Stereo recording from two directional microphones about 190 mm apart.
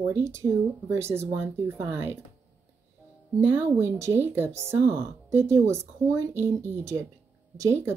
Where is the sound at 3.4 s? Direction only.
10° right (ahead or behind).